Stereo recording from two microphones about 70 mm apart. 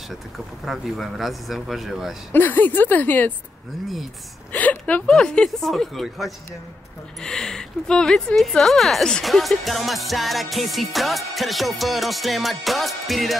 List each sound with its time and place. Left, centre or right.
0.7 s speech: centre
2.3 s speech: left
4.5 s a sound: left
5.1 s speech: centre